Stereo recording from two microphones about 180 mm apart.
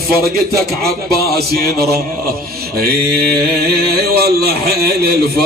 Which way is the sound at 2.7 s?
60° right (ahead or behind).